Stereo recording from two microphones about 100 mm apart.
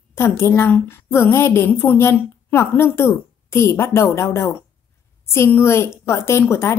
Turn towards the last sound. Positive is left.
turn(degrees=25)  # may be behind; listen again after turning